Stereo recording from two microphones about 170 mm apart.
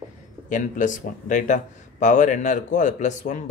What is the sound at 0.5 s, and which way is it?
A man's voice, 50° left (ahead or behind).